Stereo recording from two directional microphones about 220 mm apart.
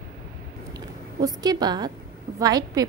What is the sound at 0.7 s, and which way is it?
A woman's voice, 15° right (ahead or behind).